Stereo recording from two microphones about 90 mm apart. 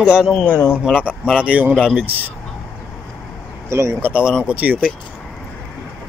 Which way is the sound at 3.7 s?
35° right (ahead or behind).